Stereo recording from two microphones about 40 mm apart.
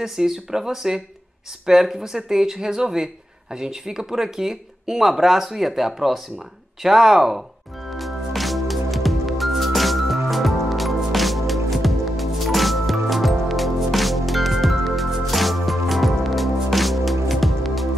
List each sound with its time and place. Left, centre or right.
0.0 s speech: centre
7.9 s music: centre